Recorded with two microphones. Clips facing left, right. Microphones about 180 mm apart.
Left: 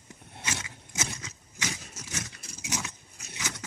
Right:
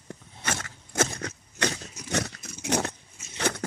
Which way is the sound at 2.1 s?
70° right (ahead or behind).